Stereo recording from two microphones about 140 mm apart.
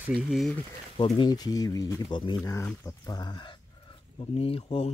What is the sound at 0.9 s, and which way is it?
Speech, 35° left (ahead or behind).